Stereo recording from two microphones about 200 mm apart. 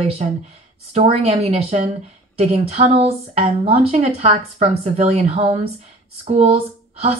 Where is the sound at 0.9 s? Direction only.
30° right (ahead or behind).